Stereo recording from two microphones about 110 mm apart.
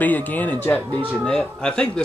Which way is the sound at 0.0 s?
15° left (ahead or behind).